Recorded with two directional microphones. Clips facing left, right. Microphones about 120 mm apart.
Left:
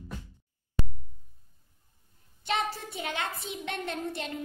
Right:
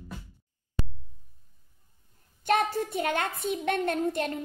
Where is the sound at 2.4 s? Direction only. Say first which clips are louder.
Right 6 dB; 50° right (ahead or behind).